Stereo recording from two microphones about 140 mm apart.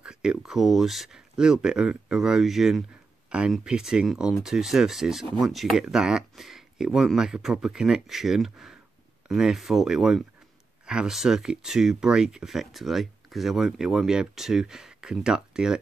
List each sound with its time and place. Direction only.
0.0 s speech: 5° right (ahead or behind)